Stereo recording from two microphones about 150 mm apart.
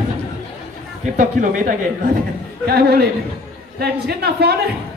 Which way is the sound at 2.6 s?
90° right.